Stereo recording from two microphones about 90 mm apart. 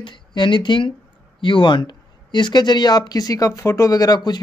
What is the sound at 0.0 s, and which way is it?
Speech, 60° left (ahead or behind).